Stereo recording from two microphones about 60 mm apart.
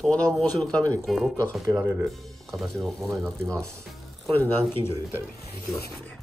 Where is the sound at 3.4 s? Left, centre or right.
Right.